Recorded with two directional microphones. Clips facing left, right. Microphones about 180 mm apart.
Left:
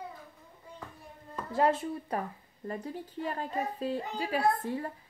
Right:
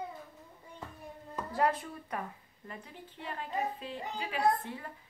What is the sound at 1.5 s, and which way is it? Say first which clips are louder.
Speech: left 4 dB; 25° left (ahead or behind).